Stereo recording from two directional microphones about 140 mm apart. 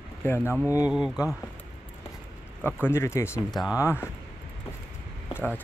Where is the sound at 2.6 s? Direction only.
15° left (ahead or behind).